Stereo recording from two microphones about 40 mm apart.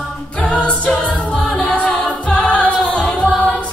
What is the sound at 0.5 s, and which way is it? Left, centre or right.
Music, left.